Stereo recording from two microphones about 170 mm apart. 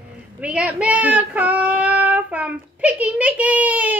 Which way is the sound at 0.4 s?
5° right (ahead or behind).